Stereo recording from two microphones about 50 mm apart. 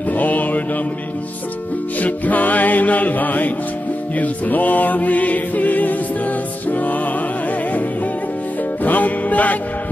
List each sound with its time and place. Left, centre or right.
0.1 s music: left
2.0 s music: left
8.8 s music: left